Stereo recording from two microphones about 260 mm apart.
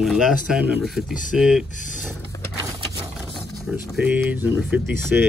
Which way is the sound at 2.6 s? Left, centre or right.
Centre.